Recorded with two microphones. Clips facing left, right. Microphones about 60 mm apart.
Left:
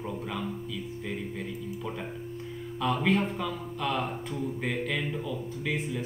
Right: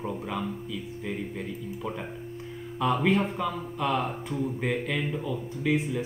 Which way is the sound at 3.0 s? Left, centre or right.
Centre.